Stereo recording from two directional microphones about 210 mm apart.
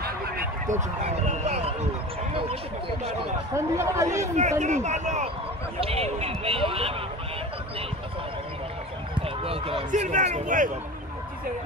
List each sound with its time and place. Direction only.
0.0 s a sound: 45° right (ahead or behind); by 1.8 s 30° right (ahead or behind)
3.5 s speech: 15° right (ahead or behind)
4.2 s speech: 35° right (ahead or behind)
9.4 s speech: 25° right (ahead or behind)